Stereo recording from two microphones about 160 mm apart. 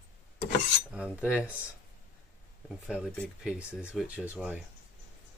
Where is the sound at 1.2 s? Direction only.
10° right (ahead or behind).